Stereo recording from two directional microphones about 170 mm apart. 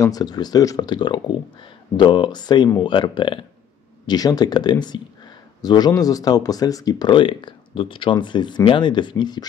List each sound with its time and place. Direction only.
0.0 s speech: 20° left (ahead or behind)